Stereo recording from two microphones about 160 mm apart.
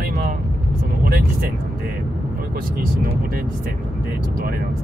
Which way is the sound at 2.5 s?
70° right (ahead or behind).